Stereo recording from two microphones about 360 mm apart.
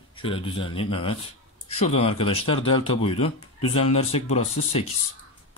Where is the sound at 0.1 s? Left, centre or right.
Centre.